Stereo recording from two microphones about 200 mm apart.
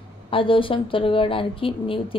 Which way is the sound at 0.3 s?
25° left (ahead or behind).